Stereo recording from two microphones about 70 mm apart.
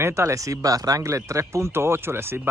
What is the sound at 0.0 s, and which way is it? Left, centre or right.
Speech, right.